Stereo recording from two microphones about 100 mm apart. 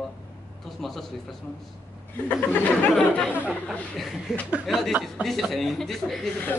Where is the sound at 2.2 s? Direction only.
20° left (ahead or behind).